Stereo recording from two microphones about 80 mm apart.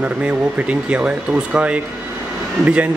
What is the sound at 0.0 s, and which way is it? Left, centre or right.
Speech, centre.